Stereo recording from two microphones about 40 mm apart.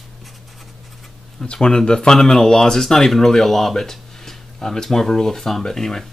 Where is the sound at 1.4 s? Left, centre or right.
Left.